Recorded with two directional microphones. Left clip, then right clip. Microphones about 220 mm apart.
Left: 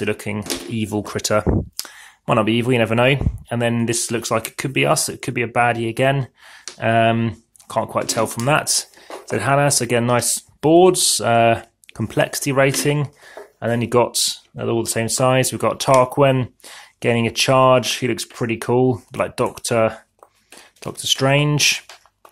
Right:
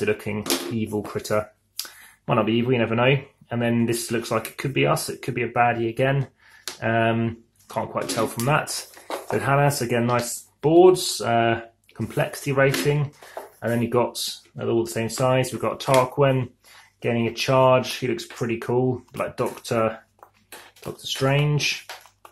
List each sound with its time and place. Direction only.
0.0 s speech: 35° left (ahead or behind)